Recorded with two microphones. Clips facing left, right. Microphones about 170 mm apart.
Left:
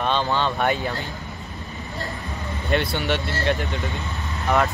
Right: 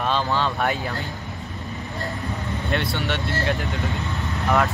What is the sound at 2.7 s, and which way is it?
Speech, centre (ahead or behind).